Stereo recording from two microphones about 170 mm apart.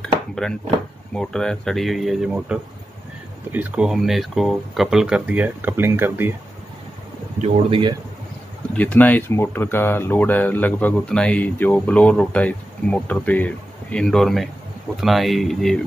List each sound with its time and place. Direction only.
0.0 s a sound: 5° left (ahead or behind)
1.1 s speech: 5° left (ahead or behind); by 6.3 s 10° right (ahead or behind)
7.4 s speech: 30° right (ahead or behind)
8.7 s speech: 10° left (ahead or behind)